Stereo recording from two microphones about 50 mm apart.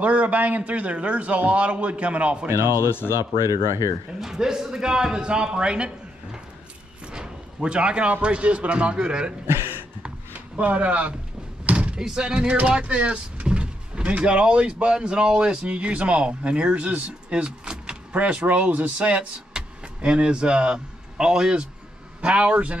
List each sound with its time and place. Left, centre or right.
0.0 s speech: right
2.4 s speech: right
4.2 s speech: centre
7.1 s speech: centre
10.0 s a sound: right
11.6 s door: right
12.0 s speech: centre